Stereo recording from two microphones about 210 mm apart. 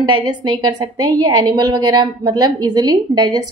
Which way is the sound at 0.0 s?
20° right (ahead or behind).